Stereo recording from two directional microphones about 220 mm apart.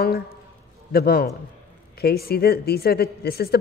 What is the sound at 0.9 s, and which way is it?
A woman's voice, 45° left (ahead or behind).